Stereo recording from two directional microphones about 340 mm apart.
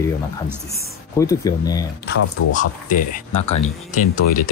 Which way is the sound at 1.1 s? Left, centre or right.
Centre.